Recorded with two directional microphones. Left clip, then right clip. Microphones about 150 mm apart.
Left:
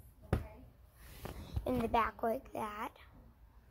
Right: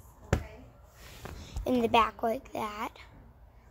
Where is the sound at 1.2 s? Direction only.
45° left (ahead or behind).